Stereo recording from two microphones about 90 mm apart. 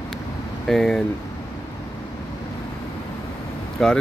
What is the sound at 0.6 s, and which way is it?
Speech, 5° left (ahead or behind).